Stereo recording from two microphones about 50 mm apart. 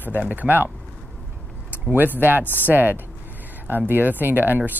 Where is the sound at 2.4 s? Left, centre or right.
Left.